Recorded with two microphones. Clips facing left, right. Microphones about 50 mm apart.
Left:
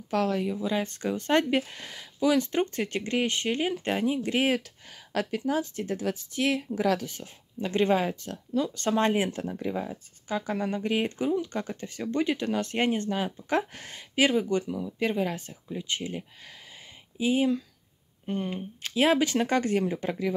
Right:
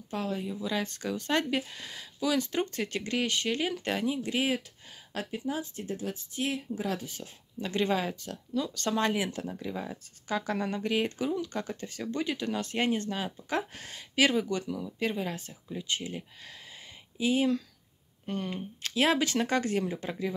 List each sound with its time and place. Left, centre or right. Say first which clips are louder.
0.1 s speech: left 7 dB; left
0.6 s speech: left 3 dB; left
5.3 s speech: left 4 dB; left
7.6 s speech: left 4 dB; left
10.2 s speech: left 1 dB; centre
10.8 s speech: left 2 dB; left
14.1 s speech: left 2 dB; centre
15.0 s speech: left 5 dB; left
17.2 s speech: left 2 dB; centre; by 20.3 s left